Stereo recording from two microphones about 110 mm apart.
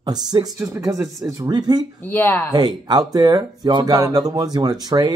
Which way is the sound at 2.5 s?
35° right (ahead or behind).